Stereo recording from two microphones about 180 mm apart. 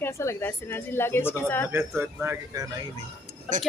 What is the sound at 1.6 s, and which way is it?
Speech, 15° right (ahead or behind).